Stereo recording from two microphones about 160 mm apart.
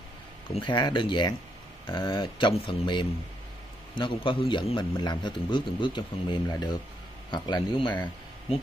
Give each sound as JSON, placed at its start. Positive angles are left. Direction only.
{"t": 0.6, "sound": "a man's voice", "side_deg": 30}